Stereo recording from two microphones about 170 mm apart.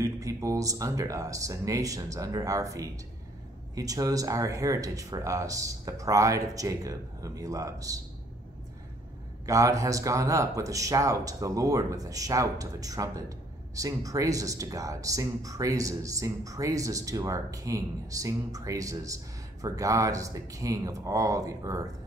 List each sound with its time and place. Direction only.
0.0 s speech: 20° right (ahead or behind)
9.5 s speech: 20° right (ahead or behind)